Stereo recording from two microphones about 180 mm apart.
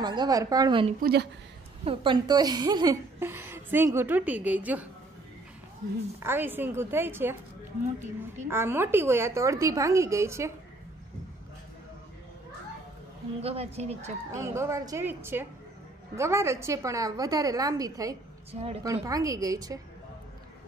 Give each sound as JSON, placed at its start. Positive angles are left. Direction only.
{"t": 0.0, "sound": "a woman's voice", "side_deg": -25}
{"t": 1.0, "sound": "a woman's voice", "side_deg": -65}
{"t": 1.9, "sound": "a woman's voice", "side_deg": -25}
{"t": 6.1, "sound": "a woman's voice", "side_deg": -10}
{"t": 13.4, "sound": "a woman's voice", "side_deg": -35}
{"t": 14.3, "sound": "a woman's voice", "side_deg": -15}
{"t": 18.5, "sound": "a woman's voice", "side_deg": -35}
{"t": 19.0, "sound": "a woman's voice", "side_deg": -20}